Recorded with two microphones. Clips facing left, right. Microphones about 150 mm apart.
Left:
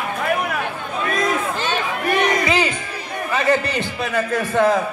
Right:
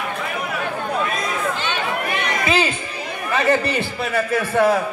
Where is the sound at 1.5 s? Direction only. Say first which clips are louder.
Left 1 dB; 40° left (ahead or behind).